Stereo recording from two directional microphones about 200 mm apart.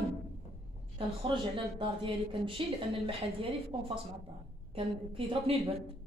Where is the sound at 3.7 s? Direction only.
25° right (ahead or behind).